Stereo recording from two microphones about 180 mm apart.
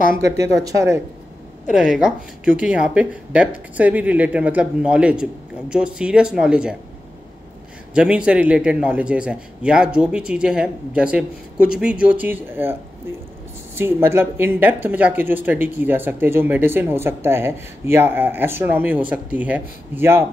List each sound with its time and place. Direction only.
0.4 s speech: 20° right (ahead or behind)
1.7 s speech: 5° right (ahead or behind)
7.9 s speech: 5° right (ahead or behind)
13.7 s speech: 10° right (ahead or behind)